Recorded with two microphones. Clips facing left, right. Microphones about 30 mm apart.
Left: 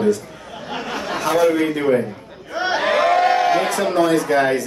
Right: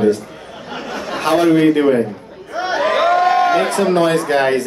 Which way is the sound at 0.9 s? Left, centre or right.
Centre.